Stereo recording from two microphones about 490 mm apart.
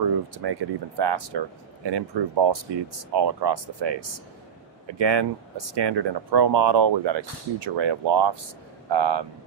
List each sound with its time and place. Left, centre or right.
0.0 s speech: right